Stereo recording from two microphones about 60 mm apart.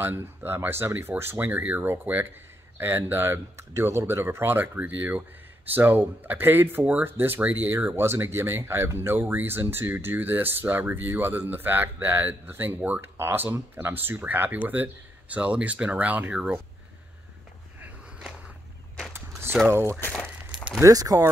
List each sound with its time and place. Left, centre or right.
0.0 s speech: right
3.8 s speech: right
4.2 s speech: right
4.7 s speech: right
19.7 s speech: right
20.8 s speech: right